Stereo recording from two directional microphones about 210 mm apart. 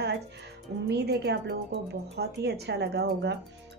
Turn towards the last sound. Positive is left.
turn(degrees=-55)  # may be behind; listen again after turning